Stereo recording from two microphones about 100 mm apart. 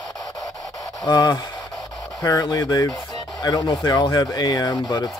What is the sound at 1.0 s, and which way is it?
Speech, 40° left (ahead or behind).